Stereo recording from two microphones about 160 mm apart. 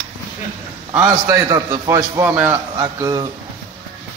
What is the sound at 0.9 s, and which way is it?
A man's voice, 20° right (ahead or behind).